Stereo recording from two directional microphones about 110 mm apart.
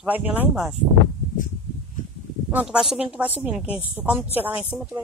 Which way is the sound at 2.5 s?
10° right (ahead or behind).